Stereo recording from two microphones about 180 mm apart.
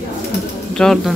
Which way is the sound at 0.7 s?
5° left (ahead or behind).